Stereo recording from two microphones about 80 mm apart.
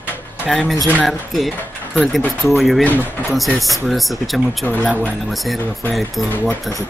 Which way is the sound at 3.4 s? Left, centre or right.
Centre.